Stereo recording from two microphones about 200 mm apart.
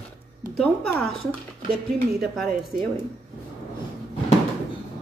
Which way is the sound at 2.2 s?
Centre (ahead or behind).